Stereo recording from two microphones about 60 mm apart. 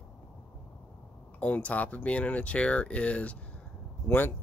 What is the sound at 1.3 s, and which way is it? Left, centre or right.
Speech, left.